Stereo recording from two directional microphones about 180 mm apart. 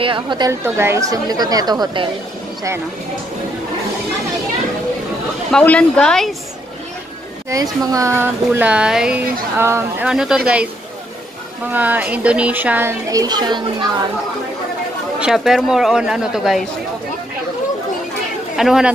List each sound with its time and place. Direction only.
0.0 s a woman's voice: 25° right (ahead or behind)
0.5 s a woman's voice: 15° right (ahead or behind)
5.5 s speech: 5° left (ahead or behind)
7.4 s speech: 20° right (ahead or behind)
11.7 s speech: 10° right (ahead or behind)
15.1 s speech: 5° right (ahead or behind)
18.6 s speech: centre (ahead or behind)